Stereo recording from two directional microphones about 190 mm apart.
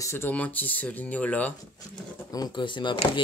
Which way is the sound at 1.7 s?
20° left (ahead or behind).